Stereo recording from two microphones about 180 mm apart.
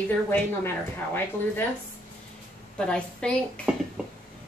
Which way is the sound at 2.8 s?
5° left (ahead or behind).